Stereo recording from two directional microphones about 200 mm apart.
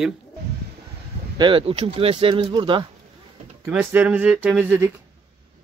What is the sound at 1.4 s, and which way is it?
Speech, 25° right (ahead or behind).